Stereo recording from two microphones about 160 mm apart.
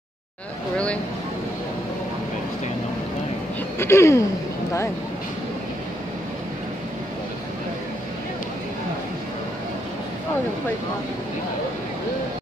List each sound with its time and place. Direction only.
3.7 s speech: 15° left (ahead or behind)